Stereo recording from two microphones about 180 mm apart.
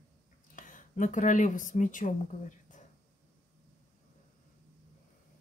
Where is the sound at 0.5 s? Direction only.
45° left (ahead or behind).